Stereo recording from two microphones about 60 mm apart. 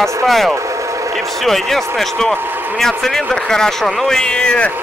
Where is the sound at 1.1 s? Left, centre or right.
Centre.